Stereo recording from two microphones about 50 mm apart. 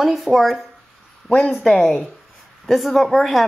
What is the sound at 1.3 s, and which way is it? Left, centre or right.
Speech, centre.